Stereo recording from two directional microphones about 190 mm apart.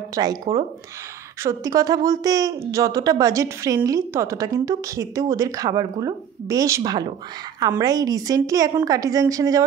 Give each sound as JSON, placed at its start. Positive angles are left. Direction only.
{"t": 0.1, "sound": "a woman's voice", "side_deg": -20}